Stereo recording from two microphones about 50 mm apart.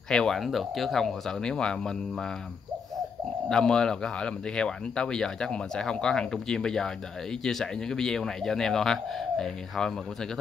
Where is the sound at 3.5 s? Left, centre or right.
Centre.